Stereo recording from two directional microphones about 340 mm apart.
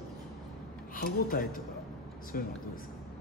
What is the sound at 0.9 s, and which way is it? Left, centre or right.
A woman's voice, left.